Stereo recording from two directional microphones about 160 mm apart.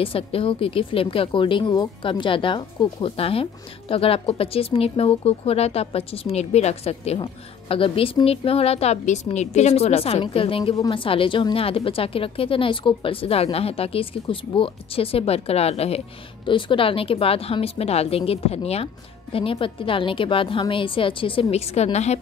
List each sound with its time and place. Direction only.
0.0 s speech: 35° left (ahead or behind)